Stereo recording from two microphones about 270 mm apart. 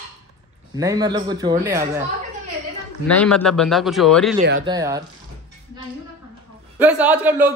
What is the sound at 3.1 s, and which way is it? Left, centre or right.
Speech, centre.